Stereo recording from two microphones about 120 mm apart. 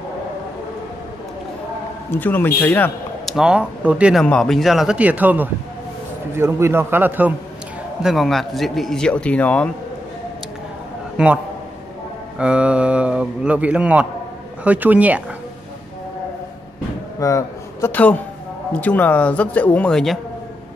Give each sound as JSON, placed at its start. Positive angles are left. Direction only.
{"t": 2.0, "sound": "speech", "side_deg": 15}
{"t": 3.3, "sound": "a man's voice", "side_deg": -5}
{"t": 4.2, "sound": "a man's voice", "side_deg": 5}
{"t": 8.0, "sound": "speech", "side_deg": 0}
{"t": 11.2, "sound": "a man's voice", "side_deg": -10}
{"t": 12.4, "sound": "a man's voice", "side_deg": -10}
{"t": 17.2, "sound": "a sound", "side_deg": 25}
{"t": 17.9, "sound": "speech", "side_deg": 15}